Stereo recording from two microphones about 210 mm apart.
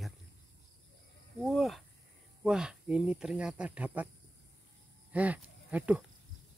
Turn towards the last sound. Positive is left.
turn(degrees=-5)  # may be behind; listen again after turning